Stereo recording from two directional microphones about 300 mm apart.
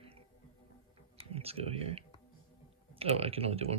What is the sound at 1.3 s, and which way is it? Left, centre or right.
Computer keyboard, centre.